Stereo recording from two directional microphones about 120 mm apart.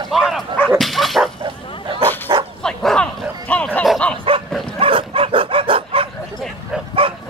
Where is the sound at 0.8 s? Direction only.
Centre (ahead or behind).